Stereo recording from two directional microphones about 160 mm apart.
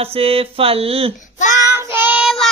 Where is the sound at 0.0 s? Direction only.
35° right (ahead or behind).